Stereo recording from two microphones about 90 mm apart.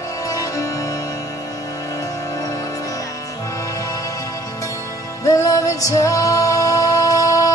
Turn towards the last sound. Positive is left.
turn(degrees=40)  # may be behind; listen again after turning